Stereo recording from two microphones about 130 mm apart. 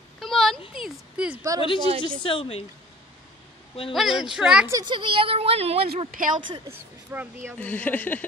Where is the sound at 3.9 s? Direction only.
Centre (ahead or behind).